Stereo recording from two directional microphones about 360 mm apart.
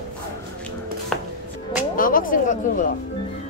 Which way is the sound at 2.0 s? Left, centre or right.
Left.